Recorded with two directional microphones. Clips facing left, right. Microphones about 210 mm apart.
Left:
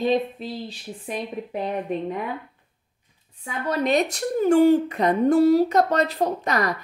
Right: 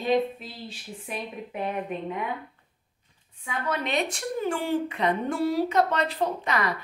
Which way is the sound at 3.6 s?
40° left (ahead or behind).